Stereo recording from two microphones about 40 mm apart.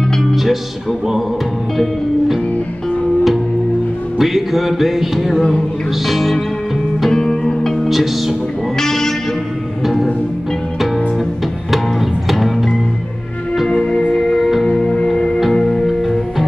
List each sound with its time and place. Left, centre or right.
0.1 s music: centre
1.8 s music: centre
4.2 s music: centre
7.1 s music: centre
7.9 s music: centre
8.7 s music: centre
11.7 s music: centre
14.1 s music: centre
14.7 s music: left